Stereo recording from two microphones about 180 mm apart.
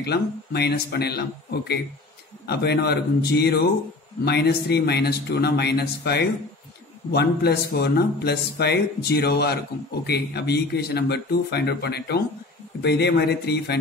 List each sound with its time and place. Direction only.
0.0 s a man's voice: 65° left (ahead or behind)